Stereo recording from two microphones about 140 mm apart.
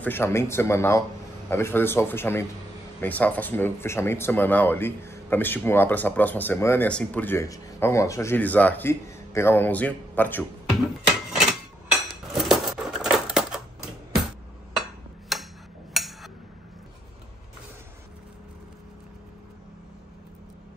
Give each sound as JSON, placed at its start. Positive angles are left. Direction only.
{"t": 0.0, "sound": "speech", "side_deg": 15}
{"t": 12.1, "sound": "dishes", "side_deg": 0}
{"t": 14.8, "sound": "a sound", "side_deg": 0}